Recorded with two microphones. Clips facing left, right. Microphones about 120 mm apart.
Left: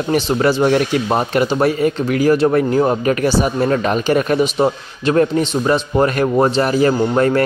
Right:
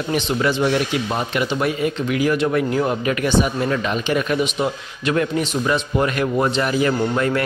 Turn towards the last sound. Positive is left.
turn(degrees=40)  # may be behind; listen again after turning